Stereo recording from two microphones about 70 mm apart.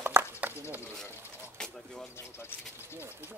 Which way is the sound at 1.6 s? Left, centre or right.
Centre.